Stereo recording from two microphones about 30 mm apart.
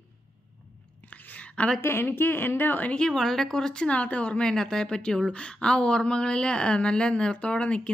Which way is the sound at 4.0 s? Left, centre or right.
Left.